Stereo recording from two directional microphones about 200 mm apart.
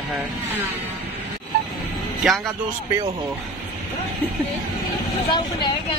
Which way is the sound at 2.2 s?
Centre (ahead or behind).